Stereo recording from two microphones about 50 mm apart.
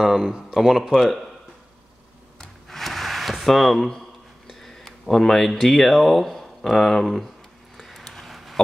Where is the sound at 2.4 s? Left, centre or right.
Centre.